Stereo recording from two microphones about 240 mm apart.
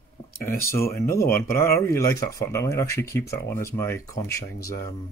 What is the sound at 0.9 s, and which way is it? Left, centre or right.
Speech, centre.